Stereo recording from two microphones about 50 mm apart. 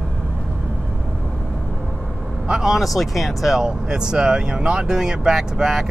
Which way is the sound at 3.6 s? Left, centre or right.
Centre.